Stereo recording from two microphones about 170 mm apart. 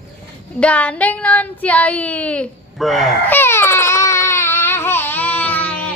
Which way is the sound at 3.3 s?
15° left (ahead or behind).